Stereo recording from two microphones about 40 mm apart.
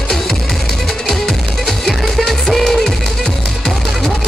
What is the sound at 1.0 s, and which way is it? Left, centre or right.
Music, centre.